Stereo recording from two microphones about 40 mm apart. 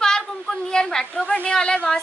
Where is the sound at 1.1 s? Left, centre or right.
Left.